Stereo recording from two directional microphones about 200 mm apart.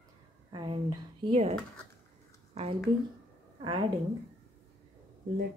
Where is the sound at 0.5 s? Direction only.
25° right (ahead or behind).